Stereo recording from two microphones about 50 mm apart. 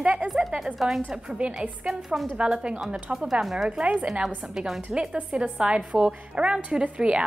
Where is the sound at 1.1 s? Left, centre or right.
Centre.